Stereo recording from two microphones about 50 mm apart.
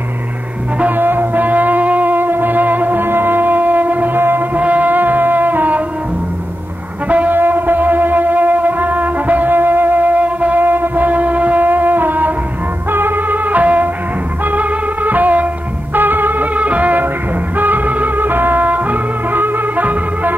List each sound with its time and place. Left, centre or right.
0.7 s music: right
4.2 s music: right
4.6 s music: right
7.1 s music: right
7.3 s music: right
10.6 s music: right